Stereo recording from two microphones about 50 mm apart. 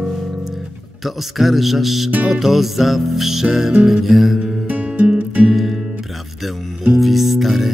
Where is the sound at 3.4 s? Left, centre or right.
Centre.